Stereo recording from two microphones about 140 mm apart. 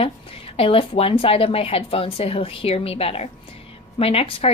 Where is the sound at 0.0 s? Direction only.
45° left (ahead or behind).